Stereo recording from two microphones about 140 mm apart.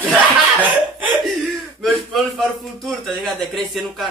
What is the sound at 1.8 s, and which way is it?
A man's voice, centre (ahead or behind).